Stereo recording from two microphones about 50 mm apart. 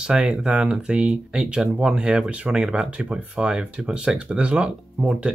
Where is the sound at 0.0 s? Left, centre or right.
Centre.